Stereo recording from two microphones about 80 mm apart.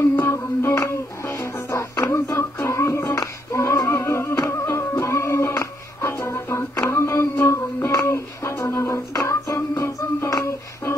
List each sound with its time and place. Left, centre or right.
0.1 s music: left